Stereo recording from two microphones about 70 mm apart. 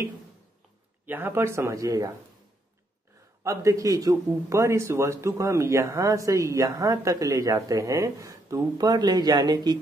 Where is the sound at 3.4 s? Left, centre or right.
Right.